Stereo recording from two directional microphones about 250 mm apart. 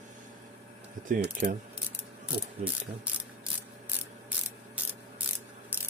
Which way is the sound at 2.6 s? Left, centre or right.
Right.